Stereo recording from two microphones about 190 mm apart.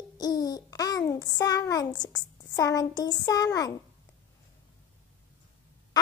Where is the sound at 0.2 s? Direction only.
20° left (ahead or behind).